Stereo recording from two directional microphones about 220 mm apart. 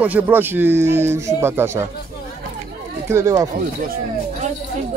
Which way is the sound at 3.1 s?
15° right (ahead or behind).